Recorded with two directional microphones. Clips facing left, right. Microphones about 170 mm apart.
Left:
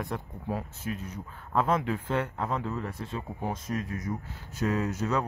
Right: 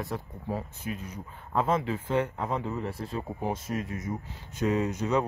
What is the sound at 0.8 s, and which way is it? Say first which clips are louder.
Speech: left 1 dB; 10° right (ahead or behind).